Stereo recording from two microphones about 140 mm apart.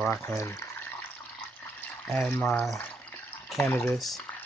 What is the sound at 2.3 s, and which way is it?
Speech, 15° left (ahead or behind).